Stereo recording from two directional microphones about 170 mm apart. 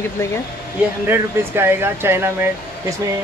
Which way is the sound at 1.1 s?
15° right (ahead or behind).